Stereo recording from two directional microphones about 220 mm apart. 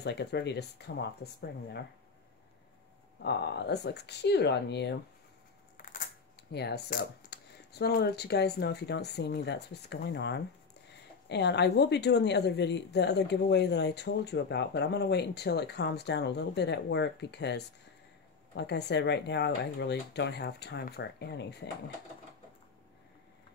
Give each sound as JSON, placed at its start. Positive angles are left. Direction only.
{"t": 0.0, "sound": "speech", "side_deg": 50}
{"t": 3.2, "sound": "speech", "side_deg": 50}
{"t": 5.8, "sound": "a sound", "side_deg": 40}
{"t": 6.5, "sound": "speech", "side_deg": 50}